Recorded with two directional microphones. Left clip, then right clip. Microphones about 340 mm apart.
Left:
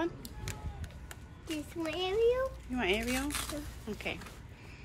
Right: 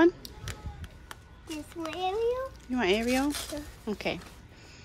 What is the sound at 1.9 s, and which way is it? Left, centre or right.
A child's voice, centre.